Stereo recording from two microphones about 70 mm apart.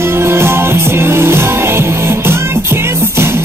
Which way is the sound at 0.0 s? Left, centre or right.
Right.